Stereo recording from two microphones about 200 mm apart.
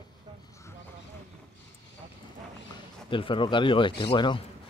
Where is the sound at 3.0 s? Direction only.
25° left (ahead or behind).